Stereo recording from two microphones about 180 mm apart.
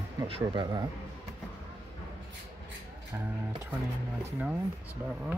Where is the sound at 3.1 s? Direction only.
15° right (ahead or behind).